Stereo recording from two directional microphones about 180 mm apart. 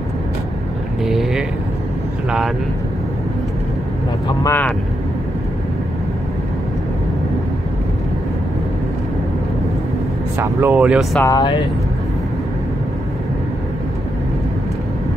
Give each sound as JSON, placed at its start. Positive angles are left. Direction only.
{"t": 1.0, "sound": "speech", "side_deg": 0}
{"t": 4.4, "sound": "speech", "side_deg": 15}
{"t": 10.4, "sound": "speech", "side_deg": -10}
{"t": 11.1, "sound": "speech", "side_deg": 20}